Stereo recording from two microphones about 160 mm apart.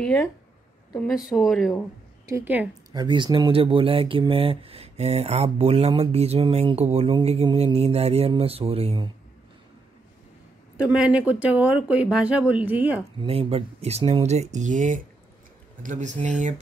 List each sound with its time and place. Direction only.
0.0 s speech: 5° left (ahead or behind)
1.3 s speech: centre (ahead or behind)
2.2 s speech: 15° right (ahead or behind)
2.9 s speech: 25° right (ahead or behind)
10.8 s speech: 5° right (ahead or behind)
13.2 s speech: 35° right (ahead or behind)